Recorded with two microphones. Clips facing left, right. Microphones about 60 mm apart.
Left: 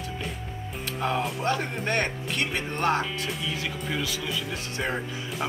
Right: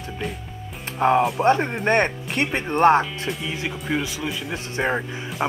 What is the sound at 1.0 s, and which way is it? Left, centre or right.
Speech, right.